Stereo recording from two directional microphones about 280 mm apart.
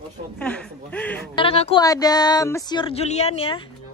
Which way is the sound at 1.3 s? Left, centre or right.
Left.